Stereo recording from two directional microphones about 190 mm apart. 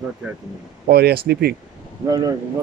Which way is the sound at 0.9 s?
55° right (ahead or behind).